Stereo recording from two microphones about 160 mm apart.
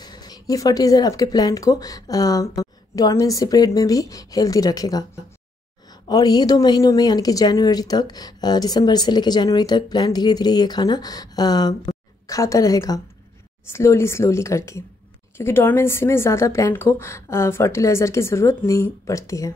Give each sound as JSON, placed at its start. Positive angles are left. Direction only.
{"t": 0.0, "sound": "speech", "side_deg": 25}
{"t": 6.0, "sound": "a woman's voice", "side_deg": 25}